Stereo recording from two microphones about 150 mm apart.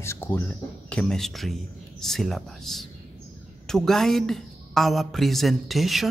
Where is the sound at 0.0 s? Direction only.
15° left (ahead or behind).